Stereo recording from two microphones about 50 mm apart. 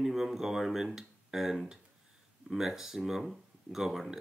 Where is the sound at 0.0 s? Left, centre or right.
Centre.